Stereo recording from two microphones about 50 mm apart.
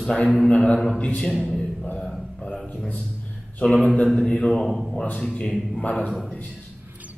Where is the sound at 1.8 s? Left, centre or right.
Left.